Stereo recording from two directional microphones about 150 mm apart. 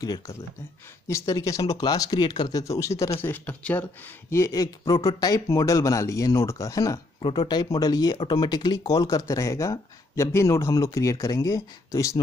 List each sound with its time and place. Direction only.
0.0 s speech: 25° left (ahead or behind); by 3.8 s 10° left (ahead or behind)
4.3 s speech: 20° left (ahead or behind)